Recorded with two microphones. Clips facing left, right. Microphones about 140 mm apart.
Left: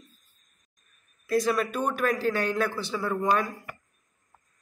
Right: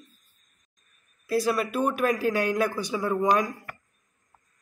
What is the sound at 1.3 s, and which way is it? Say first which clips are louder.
A man's voice: even; 5° right (ahead or behind).